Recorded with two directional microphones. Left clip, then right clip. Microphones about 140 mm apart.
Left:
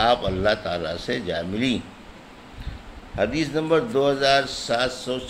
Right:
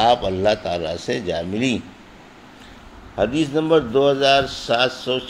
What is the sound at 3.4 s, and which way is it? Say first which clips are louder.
Speech: right 5 dB; 25° right (ahead or behind).